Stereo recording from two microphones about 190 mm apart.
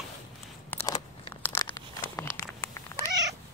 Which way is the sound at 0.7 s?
15° left (ahead or behind).